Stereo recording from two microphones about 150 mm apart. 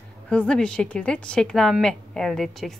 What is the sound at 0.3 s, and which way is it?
A woman's voice, 5° left (ahead or behind).